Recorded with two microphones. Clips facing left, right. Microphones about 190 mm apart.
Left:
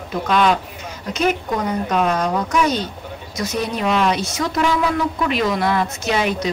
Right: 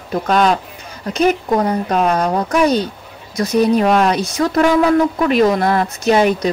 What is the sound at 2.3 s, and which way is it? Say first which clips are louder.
Speech: right 4 dB; 35° right (ahead or behind).